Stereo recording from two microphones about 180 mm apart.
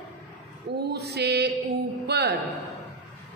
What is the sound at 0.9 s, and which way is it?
A woman's voice, 65° right (ahead or behind).